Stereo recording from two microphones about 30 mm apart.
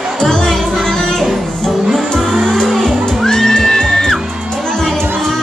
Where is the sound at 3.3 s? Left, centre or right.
Centre.